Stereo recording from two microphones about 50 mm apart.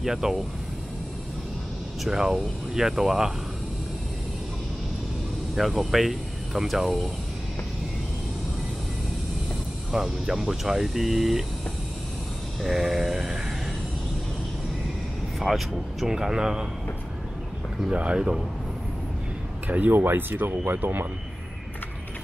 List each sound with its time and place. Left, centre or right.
0.0 s speech: centre
2.0 s speech: centre
5.6 s speech: centre
9.9 s speech: centre
12.6 s speech: centre
15.3 s speech: centre
17.9 s speech: right
19.9 s speech: right